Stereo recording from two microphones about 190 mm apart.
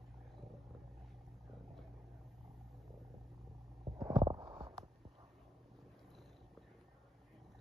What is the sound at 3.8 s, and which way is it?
Stomach rumble, 25° right (ahead or behind).